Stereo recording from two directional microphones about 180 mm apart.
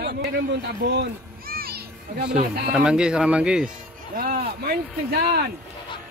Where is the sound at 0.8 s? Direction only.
65° right (ahead or behind).